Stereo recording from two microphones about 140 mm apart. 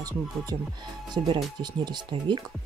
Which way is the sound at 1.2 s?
40° right (ahead or behind).